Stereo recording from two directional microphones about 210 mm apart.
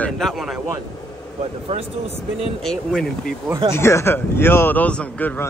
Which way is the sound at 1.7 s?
30° right (ahead or behind).